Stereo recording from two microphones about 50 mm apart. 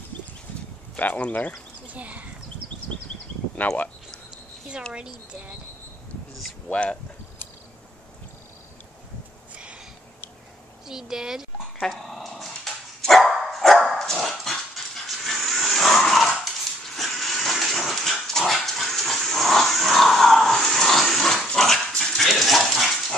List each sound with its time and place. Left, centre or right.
0.9 s speech: left
1.9 s speech: right
3.6 s speech: left
6.7 s speech: left
10.9 s speech: centre
11.8 s speech: centre
13.0 s dog: centre
15.0 s a sound: centre
16.9 s dog: centre